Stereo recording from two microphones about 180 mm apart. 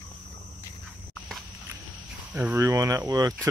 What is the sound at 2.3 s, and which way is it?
Speech, 15° right (ahead or behind).